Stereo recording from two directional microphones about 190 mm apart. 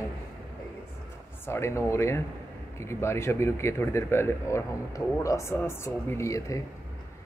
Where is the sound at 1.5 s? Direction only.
15° left (ahead or behind).